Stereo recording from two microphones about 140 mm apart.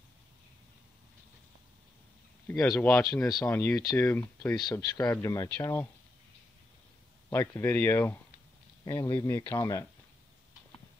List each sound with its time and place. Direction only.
2.4 s speech: 25° left (ahead or behind)
4.8 s speech: 30° left (ahead or behind)
7.2 s speech: 20° left (ahead or behind)
8.8 s speech: 30° left (ahead or behind)